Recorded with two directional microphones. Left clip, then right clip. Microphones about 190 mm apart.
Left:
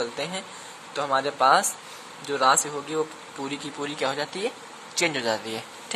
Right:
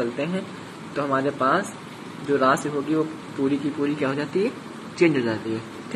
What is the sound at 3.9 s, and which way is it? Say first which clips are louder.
Speech: right 3 dB; 45° left (ahead or behind).